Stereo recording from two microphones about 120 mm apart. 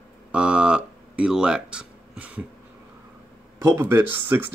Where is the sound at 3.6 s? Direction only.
20° right (ahead or behind).